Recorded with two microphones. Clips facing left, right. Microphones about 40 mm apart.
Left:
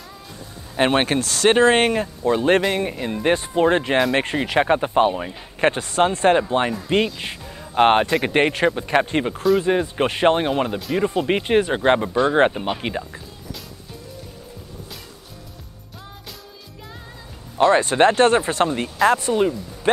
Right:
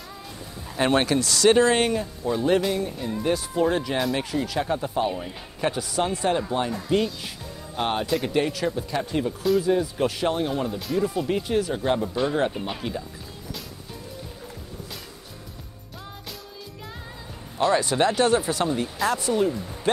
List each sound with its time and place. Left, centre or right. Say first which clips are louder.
0.7 s speech: left 3 dB; left
2.8 s speech: left 4 dB; left
3.2 s speech: left 5 dB; left
7.7 s speech: left 9 dB; left
17.6 s speech: left 6 dB; left